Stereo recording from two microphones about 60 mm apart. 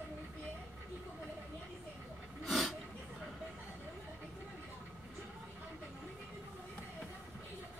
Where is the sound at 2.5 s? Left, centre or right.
Centre.